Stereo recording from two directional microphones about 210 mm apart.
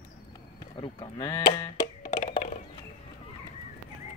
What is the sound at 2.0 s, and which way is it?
Music, 35° left (ahead or behind).